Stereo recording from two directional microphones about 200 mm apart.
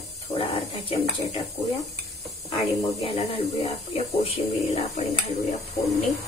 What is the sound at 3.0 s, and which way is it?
Speech, 25° left (ahead or behind).